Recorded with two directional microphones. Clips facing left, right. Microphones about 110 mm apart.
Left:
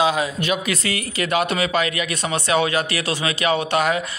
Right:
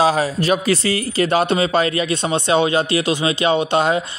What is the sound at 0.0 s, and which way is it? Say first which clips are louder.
Speech: right 4 dB; 35° right (ahead or behind).